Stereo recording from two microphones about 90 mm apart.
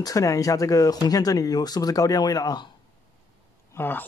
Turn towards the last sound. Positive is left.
turn(degrees=25)  # may be behind; listen again after turning